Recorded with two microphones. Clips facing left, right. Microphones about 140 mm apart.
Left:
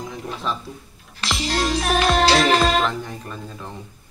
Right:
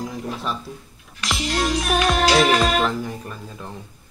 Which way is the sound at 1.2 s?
30° left (ahead or behind).